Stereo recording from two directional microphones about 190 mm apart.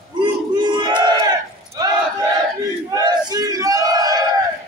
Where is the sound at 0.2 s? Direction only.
25° right (ahead or behind).